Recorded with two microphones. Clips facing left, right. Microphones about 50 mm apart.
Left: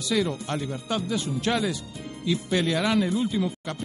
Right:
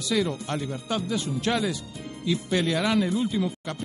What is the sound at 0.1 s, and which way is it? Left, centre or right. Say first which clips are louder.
Speech: even; left.